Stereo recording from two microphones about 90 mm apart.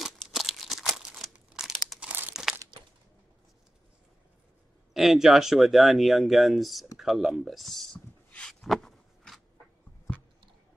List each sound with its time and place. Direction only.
0.0 s crumpling: centre (ahead or behind)
2.0 s crumpling: 20° right (ahead or behind)
4.9 s speech: centre (ahead or behind)
8.3 s a sound: 10° left (ahead or behind)